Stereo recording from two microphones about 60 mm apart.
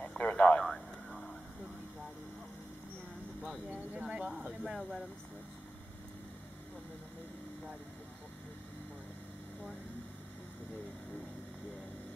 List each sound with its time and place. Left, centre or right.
0.2 s radio: left
0.7 s a sound: centre
3.4 s speech: centre
3.9 s speech: centre